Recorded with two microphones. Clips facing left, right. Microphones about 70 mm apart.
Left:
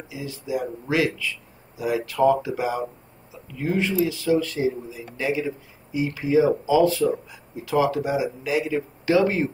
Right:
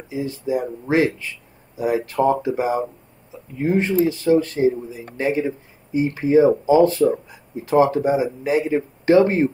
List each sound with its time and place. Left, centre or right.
0.1 s speech: right